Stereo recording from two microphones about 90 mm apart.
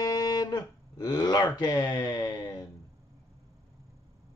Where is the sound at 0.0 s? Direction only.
45° left (ahead or behind).